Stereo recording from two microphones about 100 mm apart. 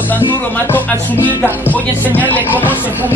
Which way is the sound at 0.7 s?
15° left (ahead or behind).